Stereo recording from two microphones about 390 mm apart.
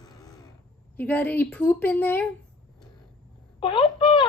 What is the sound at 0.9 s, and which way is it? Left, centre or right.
A woman's voice, centre.